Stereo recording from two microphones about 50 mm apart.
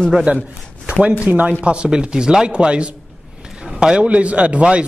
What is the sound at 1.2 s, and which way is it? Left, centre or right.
A man's voice, right.